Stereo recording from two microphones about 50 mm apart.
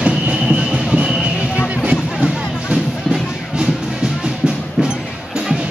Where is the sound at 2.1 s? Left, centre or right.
Centre.